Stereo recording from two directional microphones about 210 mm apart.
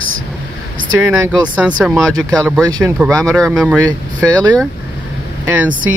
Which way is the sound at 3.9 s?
5° left (ahead or behind).